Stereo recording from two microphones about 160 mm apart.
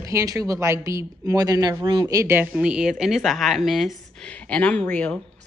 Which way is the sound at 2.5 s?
5° right (ahead or behind).